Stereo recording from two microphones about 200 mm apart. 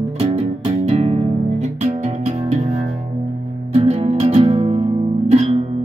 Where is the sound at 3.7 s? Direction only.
30° right (ahead or behind).